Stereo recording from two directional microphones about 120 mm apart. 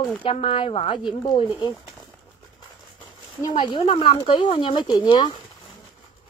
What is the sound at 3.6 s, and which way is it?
Speech, 45° left (ahead or behind).